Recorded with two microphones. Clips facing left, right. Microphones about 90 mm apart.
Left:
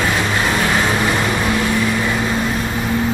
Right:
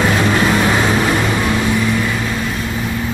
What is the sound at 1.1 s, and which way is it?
Vehicle, 5° right (ahead or behind).